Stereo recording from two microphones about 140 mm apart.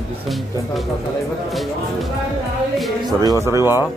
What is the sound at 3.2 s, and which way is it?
Speech, 25° right (ahead or behind).